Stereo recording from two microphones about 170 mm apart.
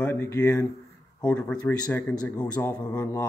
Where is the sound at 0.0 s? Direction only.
15° left (ahead or behind).